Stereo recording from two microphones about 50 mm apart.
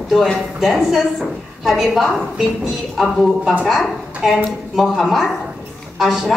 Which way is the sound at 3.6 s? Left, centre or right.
Centre.